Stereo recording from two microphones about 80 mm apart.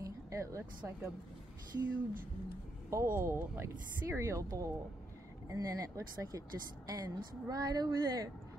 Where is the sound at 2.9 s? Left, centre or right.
Right.